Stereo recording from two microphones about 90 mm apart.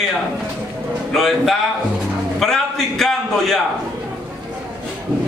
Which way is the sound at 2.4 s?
5° left (ahead or behind).